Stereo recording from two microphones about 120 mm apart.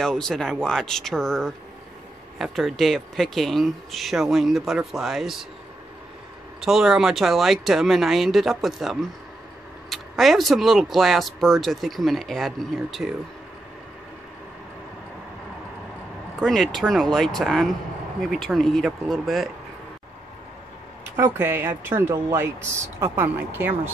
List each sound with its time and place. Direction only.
0.0 s speech: 5° left (ahead or behind)
6.6 s speech: 5° right (ahead or behind)
16.3 s speech: centre (ahead or behind)
21.2 s speech: 20° right (ahead or behind)